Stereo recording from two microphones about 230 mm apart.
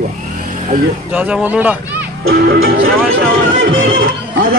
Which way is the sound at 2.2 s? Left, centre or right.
Right.